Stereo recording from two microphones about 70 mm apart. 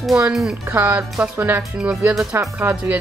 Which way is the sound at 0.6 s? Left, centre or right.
Right.